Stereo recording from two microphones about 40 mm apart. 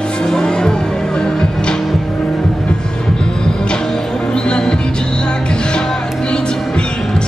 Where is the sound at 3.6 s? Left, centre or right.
Centre.